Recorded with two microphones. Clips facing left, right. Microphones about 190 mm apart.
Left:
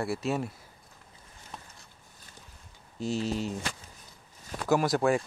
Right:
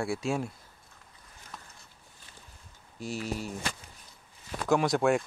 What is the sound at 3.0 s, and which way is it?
Speech, 25° left (ahead or behind).